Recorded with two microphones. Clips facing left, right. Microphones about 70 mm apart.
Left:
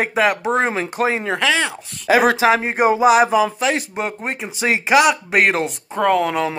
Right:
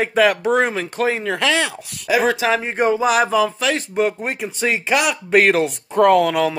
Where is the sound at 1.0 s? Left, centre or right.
Left.